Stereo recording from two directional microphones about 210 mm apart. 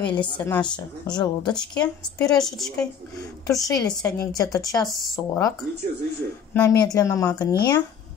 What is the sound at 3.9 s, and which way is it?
Speech, 15° left (ahead or behind).